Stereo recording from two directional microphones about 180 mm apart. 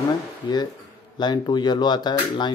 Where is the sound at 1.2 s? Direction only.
25° left (ahead or behind).